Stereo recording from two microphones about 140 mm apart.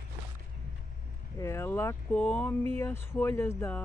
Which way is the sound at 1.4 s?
20° left (ahead or behind).